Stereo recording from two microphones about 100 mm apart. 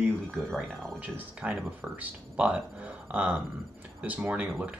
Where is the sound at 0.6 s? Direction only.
15° right (ahead or behind).